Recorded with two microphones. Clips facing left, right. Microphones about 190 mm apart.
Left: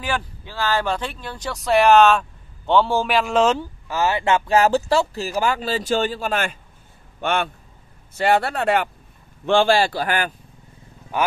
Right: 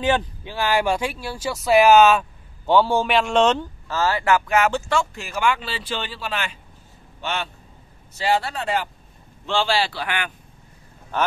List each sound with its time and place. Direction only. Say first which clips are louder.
0.0 s a man's voice: right 5 dB; 20° right (ahead or behind); by 10.3 s 40° left (ahead or behind)
11.1 s speech: left 1 dB; 10° left (ahead or behind)